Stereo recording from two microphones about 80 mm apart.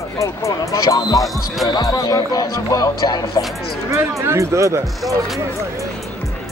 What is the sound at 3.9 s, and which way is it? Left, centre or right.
Speech, right.